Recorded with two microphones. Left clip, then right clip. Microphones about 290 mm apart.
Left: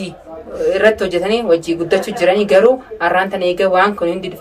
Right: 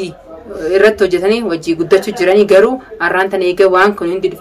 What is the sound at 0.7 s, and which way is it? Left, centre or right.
Speech, centre.